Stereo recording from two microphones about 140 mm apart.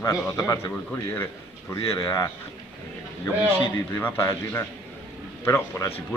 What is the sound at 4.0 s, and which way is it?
Speech, 15° left (ahead or behind).